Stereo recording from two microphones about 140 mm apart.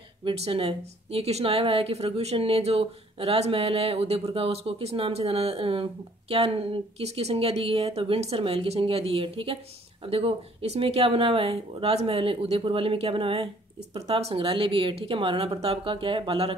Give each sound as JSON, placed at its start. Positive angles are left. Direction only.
{"t": 0.2, "sound": "a woman's voice", "side_deg": -45}